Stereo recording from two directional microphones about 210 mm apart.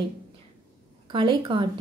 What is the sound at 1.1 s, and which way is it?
Speech, 25° right (ahead or behind).